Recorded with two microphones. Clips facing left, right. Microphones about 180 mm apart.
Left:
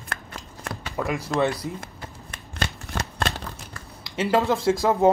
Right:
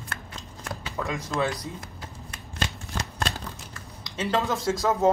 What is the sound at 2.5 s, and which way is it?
Shuffling cards, 65° left (ahead or behind).